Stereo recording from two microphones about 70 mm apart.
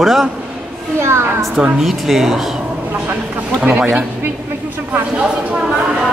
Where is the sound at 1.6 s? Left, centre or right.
Centre.